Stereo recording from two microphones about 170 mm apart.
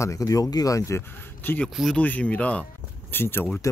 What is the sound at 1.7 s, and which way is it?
Speech, centre (ahead or behind).